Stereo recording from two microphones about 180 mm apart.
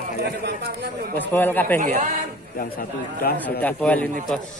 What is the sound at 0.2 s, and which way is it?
Speech, 55° right (ahead or behind).